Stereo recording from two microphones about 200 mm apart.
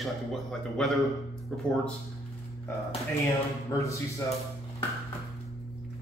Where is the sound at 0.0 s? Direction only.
Centre (ahead or behind).